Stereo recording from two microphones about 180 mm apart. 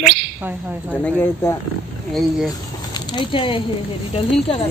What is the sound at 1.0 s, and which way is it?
Speech, 15° left (ahead or behind).